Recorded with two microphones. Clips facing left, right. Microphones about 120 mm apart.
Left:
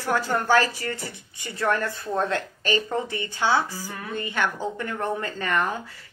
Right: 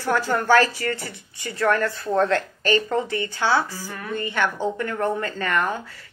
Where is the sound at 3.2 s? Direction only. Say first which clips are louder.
Left 2 dB; 40° right (ahead or behind).